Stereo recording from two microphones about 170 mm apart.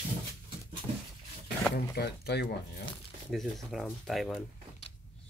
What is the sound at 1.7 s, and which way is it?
Speech, 70° left (ahead or behind).